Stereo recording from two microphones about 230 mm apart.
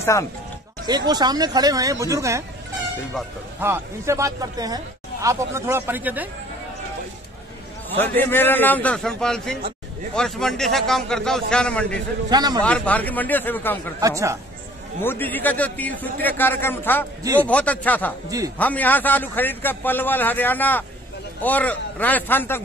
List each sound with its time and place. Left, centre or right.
0.0 s speech: centre
0.8 s speech: centre
3.6 s speech: centre
8.0 s a man's voice: centre
12.3 s speech: centre
12.6 s a man's voice: centre
14.0 s speech: centre
15.0 s a man's voice: centre